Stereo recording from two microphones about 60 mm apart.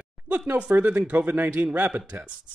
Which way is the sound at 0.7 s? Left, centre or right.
Right.